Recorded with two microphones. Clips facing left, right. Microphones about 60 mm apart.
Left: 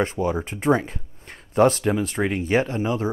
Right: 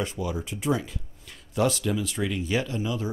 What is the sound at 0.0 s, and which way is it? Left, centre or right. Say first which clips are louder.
Speech: left 7 dB; left.